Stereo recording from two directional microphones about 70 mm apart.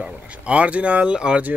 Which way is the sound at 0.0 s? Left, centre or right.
Centre.